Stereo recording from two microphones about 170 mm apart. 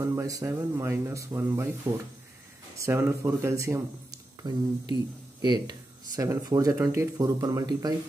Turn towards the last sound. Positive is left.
turn(degrees=-25)  # may be behind; listen again after turning